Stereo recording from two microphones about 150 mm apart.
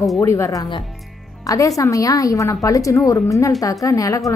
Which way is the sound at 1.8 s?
20° left (ahead or behind).